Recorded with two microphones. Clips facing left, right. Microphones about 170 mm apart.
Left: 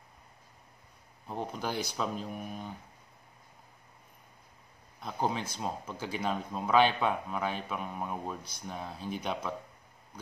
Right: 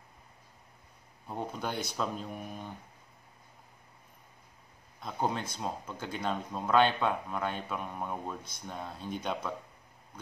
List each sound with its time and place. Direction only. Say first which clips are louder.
1.2 s speech: left 1 dB; centre (ahead or behind)
5.0 s speech: even; centre (ahead or behind)